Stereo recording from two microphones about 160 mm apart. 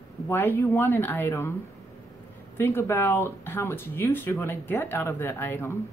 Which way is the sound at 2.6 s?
15° left (ahead or behind).